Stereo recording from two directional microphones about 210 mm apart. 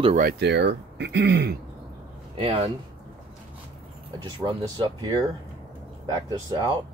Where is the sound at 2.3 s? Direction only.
25° right (ahead or behind).